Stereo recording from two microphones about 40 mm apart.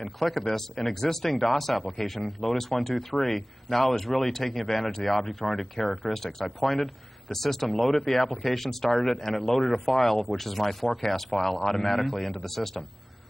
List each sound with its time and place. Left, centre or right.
0.0 s speech: centre